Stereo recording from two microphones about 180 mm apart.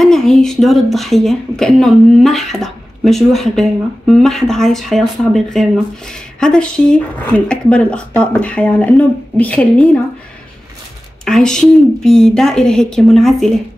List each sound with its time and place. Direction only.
0.0 s speech: centre (ahead or behind)
11.2 s speech: 5° left (ahead or behind)